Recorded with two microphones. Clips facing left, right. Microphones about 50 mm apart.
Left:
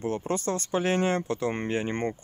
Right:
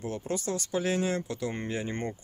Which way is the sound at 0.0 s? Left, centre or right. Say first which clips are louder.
Left 4 dB; left.